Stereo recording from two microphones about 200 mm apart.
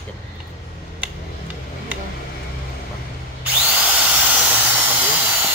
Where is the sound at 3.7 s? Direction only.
5° right (ahead or behind).